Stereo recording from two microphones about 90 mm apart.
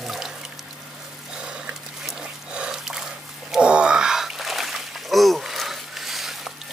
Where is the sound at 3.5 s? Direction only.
10° right (ahead or behind).